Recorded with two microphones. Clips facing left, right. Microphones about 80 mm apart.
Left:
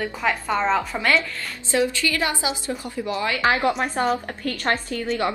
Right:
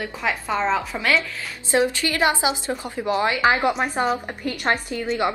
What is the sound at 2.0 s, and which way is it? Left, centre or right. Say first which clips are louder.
A woman's voice: right 3 dB; right.